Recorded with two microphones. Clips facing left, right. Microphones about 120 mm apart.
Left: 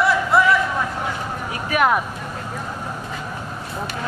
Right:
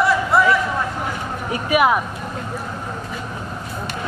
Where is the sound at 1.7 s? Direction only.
5° right (ahead or behind).